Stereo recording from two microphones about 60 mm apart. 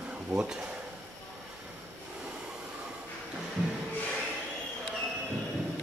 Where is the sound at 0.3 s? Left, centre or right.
Centre.